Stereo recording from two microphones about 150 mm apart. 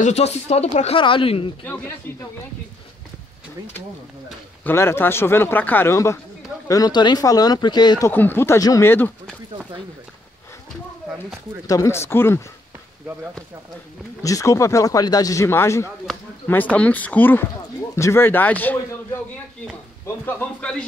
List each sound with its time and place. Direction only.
0.0 s speech: 45° left (ahead or behind)
2.1 s speech: 15° left (ahead or behind)
4.6 s speech: 15° left (ahead or behind)
8.1 s speech: 15° left (ahead or behind)
11.6 s speech: 20° left (ahead or behind)
14.2 s speech: 20° left (ahead or behind)
20.2 s speech: 10° left (ahead or behind)